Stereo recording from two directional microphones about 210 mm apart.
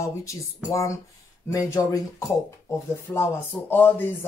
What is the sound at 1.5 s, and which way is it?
Speech, 15° left (ahead or behind).